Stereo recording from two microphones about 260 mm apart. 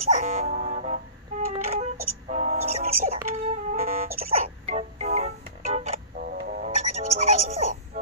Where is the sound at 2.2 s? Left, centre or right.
Right.